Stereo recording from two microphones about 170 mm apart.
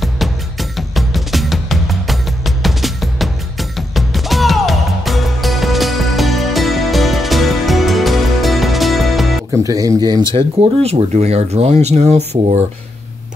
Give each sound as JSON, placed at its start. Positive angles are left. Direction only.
{"t": 0.0, "sound": "music", "side_deg": 0}
{"t": 9.5, "sound": "speech", "side_deg": -20}
{"t": 10.3, "sound": "speech", "side_deg": -35}